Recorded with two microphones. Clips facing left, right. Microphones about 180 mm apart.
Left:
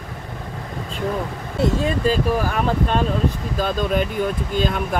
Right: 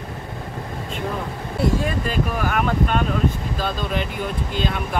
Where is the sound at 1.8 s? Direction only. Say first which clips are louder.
Left 4 dB; 30° left (ahead or behind).